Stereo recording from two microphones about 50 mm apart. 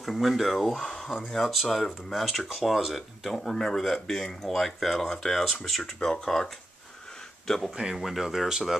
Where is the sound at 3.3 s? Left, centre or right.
Centre.